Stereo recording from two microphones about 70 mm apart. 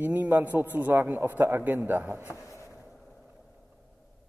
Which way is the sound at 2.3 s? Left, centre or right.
Left.